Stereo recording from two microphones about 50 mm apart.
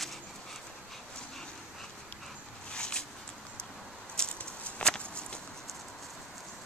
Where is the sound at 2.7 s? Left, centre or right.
Centre.